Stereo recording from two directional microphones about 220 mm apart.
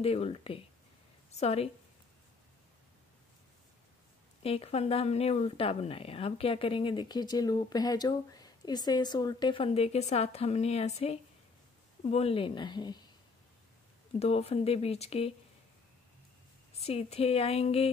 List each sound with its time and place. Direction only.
0.0 s speech: 25° left (ahead or behind)
4.4 s speech: 25° left (ahead or behind)
14.2 s speech: 30° left (ahead or behind)
16.7 s speech: 30° left (ahead or behind)